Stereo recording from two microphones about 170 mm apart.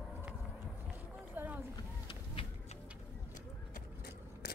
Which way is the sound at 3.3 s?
60° left (ahead or behind).